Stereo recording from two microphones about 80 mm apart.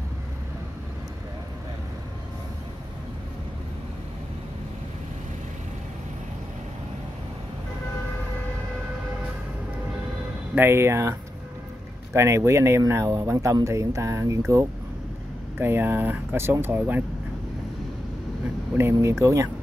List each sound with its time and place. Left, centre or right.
10.5 s speech: right
15.5 s speech: right
18.8 s speech: right